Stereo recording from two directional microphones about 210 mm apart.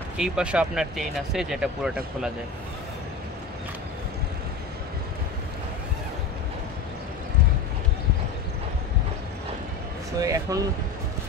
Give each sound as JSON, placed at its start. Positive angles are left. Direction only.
{"t": 0.2, "sound": "speech", "side_deg": -5}
{"t": 10.2, "sound": "speech", "side_deg": -15}